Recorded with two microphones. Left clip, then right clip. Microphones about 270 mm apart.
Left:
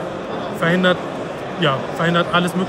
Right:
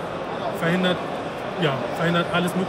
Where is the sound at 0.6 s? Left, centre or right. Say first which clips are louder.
Left 7 dB; centre.